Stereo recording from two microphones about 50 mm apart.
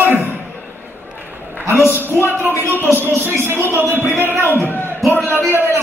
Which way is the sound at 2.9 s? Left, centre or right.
Right.